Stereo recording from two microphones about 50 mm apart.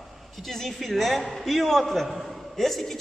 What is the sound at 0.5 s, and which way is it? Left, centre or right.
A man's voice, centre.